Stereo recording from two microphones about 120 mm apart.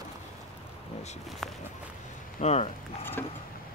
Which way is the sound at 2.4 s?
60° left (ahead or behind).